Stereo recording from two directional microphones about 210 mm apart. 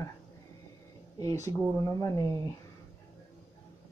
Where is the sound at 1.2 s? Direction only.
15° left (ahead or behind).